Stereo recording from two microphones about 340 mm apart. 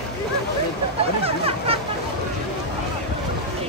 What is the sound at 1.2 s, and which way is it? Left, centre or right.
Speech, centre.